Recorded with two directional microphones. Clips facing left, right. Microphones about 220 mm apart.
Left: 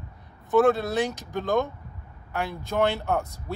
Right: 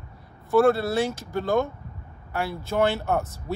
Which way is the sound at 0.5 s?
15° left (ahead or behind).